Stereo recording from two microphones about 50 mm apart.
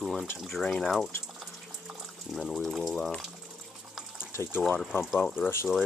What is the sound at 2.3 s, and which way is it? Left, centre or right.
Speech, centre.